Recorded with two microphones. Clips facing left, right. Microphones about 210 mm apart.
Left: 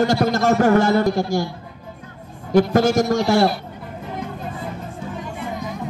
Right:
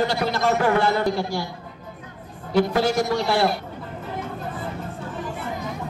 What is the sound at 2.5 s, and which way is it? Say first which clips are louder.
A man's voice: left 4 dB; 45° left (ahead or behind).